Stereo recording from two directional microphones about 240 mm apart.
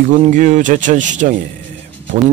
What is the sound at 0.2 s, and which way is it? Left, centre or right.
Speech, right.